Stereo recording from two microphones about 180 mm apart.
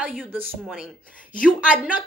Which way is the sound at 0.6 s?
Centre (ahead or behind).